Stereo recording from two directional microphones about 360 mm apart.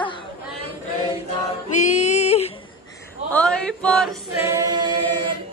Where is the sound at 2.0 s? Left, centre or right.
Centre.